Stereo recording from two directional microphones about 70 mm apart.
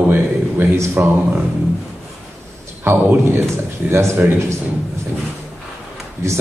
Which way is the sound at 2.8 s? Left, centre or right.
Right.